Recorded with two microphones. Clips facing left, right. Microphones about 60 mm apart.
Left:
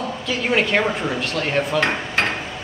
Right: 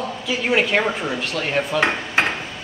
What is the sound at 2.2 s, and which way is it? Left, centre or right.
Hammer, centre.